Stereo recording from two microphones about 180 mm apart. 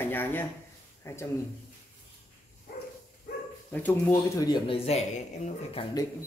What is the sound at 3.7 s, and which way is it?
Speech, 10° left (ahead or behind).